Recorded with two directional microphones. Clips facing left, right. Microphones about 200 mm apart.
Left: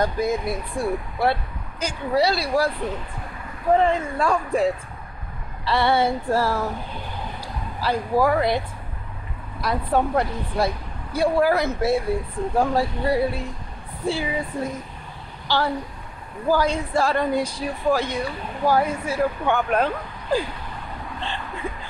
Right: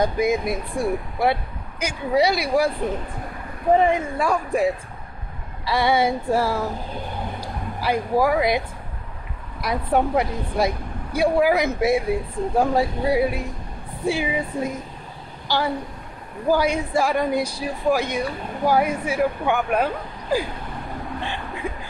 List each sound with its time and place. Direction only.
0.0 s speech: 15° right (ahead or behind)
3.7 s speech: 15° right (ahead or behind)
7.8 s a woman's voice: 10° right (ahead or behind)